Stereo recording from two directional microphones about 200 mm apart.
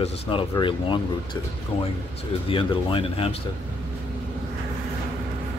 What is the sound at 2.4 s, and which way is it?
Speech, 25° left (ahead or behind).